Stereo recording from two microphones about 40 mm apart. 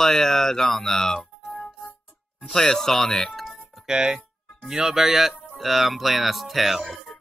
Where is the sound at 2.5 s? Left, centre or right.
Centre.